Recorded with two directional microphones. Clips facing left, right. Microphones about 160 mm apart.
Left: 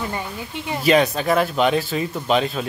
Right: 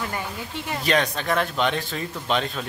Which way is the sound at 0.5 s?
10° left (ahead or behind).